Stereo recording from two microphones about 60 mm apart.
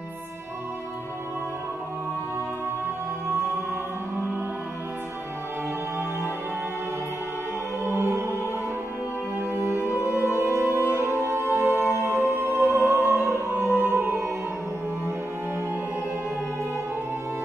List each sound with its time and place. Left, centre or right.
7.8 s music: right
9.4 s music: right